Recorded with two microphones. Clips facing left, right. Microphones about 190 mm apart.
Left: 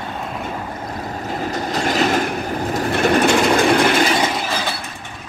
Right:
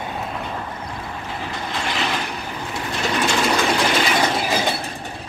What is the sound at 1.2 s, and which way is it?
Train, 40° left (ahead or behind).